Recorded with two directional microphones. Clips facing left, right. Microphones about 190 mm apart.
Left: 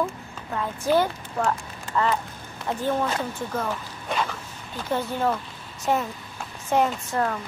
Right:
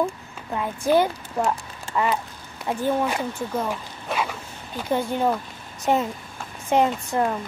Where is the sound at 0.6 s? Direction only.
15° right (ahead or behind).